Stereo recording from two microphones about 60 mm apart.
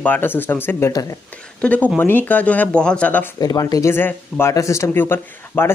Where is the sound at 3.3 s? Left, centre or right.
Left.